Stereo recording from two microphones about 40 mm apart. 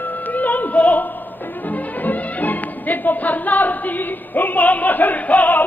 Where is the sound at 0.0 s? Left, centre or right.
Left.